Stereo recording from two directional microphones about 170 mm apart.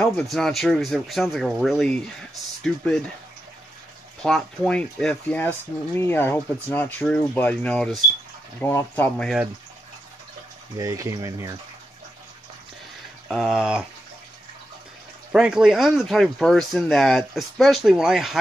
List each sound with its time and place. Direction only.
0.0 s speech: 5° left (ahead or behind)
4.2 s speech: 5° left (ahead or behind)
10.8 s speech: 20° right (ahead or behind)
13.3 s speech: centre (ahead or behind)
15.3 s speech: 5° right (ahead or behind)